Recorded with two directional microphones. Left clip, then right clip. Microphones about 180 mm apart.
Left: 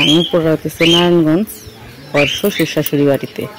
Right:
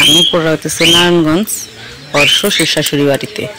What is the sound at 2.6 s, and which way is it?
Speech, 10° left (ahead or behind).